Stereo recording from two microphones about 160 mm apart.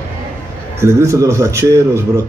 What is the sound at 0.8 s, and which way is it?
Speech, 20° right (ahead or behind).